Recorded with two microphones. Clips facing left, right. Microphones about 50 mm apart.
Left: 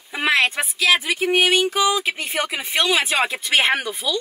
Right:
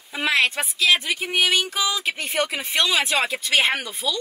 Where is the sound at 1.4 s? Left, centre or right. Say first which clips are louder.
Left 4 dB; left.